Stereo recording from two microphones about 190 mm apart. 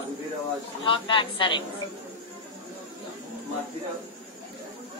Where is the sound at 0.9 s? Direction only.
25° left (ahead or behind).